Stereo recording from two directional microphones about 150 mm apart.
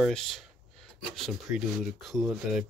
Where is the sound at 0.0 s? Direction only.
Centre (ahead or behind).